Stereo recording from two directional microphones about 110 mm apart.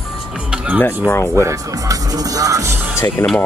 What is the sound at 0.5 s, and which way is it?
Music, 10° right (ahead or behind).